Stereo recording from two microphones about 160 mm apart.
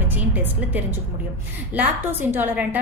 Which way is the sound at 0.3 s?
10° right (ahead or behind).